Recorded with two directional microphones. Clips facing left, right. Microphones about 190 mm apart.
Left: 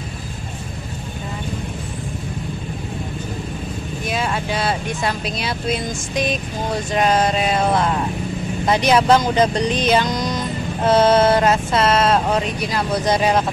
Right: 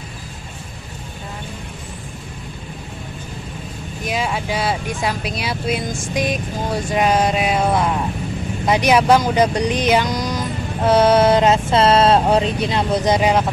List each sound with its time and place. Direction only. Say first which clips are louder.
4.1 s speech: right 1 dB; 10° right (ahead or behind)